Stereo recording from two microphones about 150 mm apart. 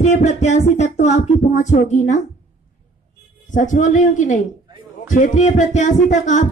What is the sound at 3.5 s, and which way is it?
Speech, 55° left (ahead or behind).